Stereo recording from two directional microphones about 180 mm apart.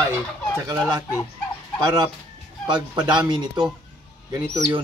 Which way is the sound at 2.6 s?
25° right (ahead or behind).